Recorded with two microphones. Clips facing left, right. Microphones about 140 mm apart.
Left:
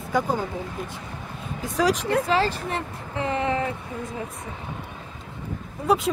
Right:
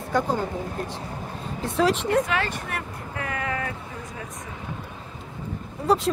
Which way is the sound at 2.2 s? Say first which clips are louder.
Left 4 dB; 30° left (ahead or behind).